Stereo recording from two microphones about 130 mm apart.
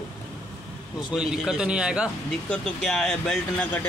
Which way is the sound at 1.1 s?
5° right (ahead or behind).